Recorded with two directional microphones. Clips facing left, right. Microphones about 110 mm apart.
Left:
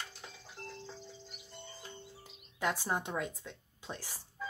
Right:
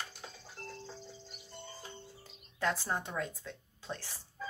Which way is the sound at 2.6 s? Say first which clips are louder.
Even; 15° left (ahead or behind).